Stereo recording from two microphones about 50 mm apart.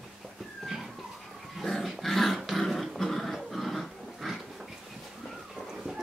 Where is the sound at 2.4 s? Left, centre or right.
Centre.